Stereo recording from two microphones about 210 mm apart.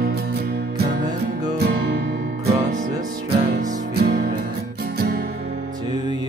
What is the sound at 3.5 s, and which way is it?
Music, 35° right (ahead or behind).